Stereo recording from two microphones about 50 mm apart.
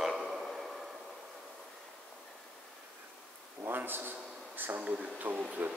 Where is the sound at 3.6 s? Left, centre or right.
Right.